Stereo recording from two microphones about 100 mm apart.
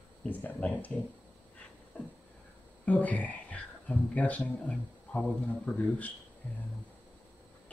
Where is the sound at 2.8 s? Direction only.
15° left (ahead or behind).